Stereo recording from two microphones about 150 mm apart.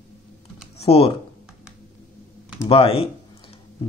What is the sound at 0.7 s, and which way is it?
Speech, 40° left (ahead or behind).